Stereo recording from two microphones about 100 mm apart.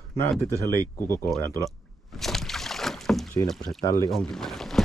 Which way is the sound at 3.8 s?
30° left (ahead or behind).